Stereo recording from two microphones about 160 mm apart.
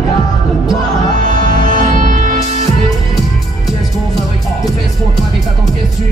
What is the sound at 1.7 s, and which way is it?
Music, 55° right (ahead or behind).